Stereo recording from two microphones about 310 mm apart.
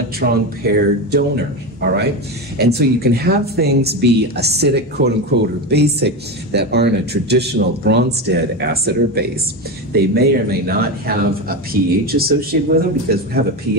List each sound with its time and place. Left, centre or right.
0.2 s a man's voice: right